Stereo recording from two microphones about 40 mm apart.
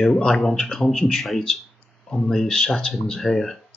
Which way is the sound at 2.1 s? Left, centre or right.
Centre.